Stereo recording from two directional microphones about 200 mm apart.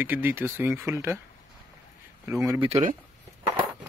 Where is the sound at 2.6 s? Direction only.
35° right (ahead or behind).